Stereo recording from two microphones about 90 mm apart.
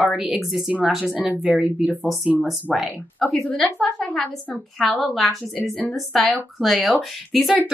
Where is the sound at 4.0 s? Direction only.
10° left (ahead or behind).